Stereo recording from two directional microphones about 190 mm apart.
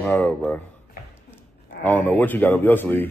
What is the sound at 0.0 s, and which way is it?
Speech, 5° left (ahead or behind).